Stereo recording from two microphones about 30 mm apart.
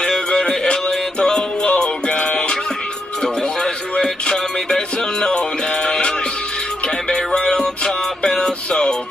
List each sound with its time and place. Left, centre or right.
0.0 s music: left
4.0 s music: left
7.1 s music: left